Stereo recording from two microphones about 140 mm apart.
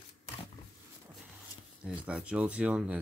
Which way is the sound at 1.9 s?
5° right (ahead or behind).